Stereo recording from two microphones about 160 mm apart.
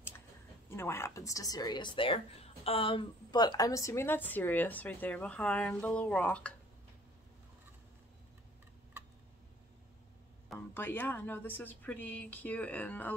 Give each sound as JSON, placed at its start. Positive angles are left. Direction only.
{"t": 0.7, "sound": "speech", "side_deg": 15}
{"t": 10.7, "sound": "speech", "side_deg": 15}